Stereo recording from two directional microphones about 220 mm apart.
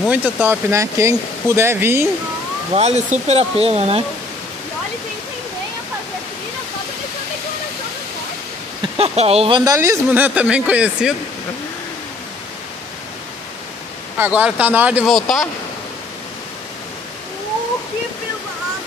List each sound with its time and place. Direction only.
0.0 s speech: 5° right (ahead or behind)
2.7 s speech: 30° right (ahead or behind)
8.9 s speech: 25° right (ahead or behind); by 11.1 s 5° right (ahead or behind)
14.1 s speech: 5° right (ahead or behind)